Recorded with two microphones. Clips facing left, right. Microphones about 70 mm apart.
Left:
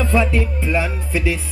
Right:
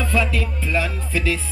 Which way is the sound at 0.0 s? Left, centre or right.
Left.